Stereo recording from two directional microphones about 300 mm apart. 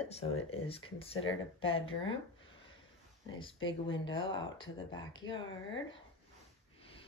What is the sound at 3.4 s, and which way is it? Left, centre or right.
Speech, centre.